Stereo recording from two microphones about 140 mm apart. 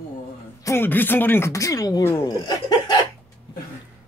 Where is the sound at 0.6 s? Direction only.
15° left (ahead or behind).